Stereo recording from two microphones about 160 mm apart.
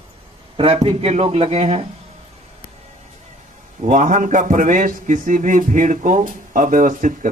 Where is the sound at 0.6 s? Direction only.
35° right (ahead or behind).